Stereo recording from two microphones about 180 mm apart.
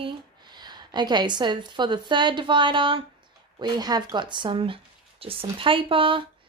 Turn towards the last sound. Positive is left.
turn(degrees=-30)  # may be behind; listen again after turning